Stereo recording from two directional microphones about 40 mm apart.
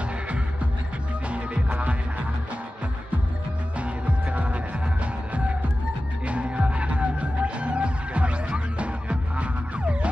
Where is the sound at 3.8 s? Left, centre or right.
Right.